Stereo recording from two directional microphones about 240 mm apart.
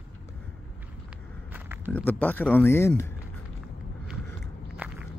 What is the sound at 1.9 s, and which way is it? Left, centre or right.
Speech, centre.